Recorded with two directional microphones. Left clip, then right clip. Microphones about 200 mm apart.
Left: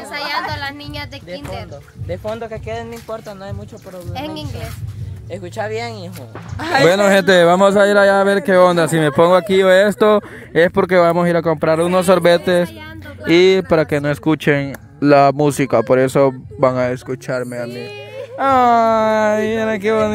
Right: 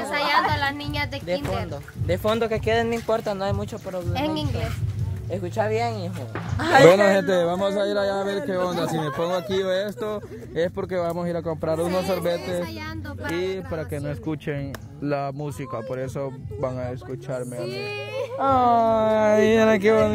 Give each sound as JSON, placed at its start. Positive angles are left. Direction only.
{"t": 0.0, "sound": "a sound", "side_deg": 10}
{"t": 2.0, "sound": "speech", "side_deg": -65}
{"t": 3.3, "sound": "speech", "side_deg": -25}
{"t": 4.1, "sound": "speech", "side_deg": 0}
{"t": 5.3, "sound": "speech", "side_deg": 25}
{"t": 6.6, "sound": "speech", "side_deg": 40}
{"t": 6.9, "sound": "speech", "side_deg": 30}
{"t": 17.6, "sound": "a sound", "side_deg": -15}
{"t": 18.4, "sound": "speech", "side_deg": 40}
{"t": 19.3, "sound": "speech", "side_deg": 5}